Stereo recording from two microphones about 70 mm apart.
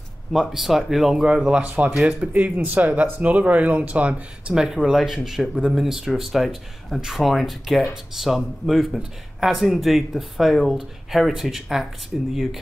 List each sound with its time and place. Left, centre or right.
0.3 s speech: centre
2.3 s speech: right; by 12.3 s centre